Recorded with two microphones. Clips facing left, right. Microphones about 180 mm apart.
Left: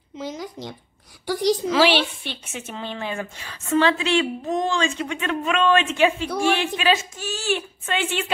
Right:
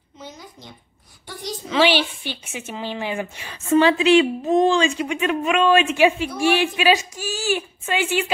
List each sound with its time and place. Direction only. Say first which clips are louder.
0.2 s speech: left 8 dB; 85° left
1.7 s a woman's voice: right 5 dB; centre (ahead or behind)